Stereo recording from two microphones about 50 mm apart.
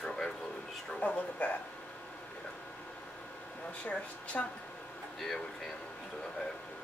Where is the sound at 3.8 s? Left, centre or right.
Left.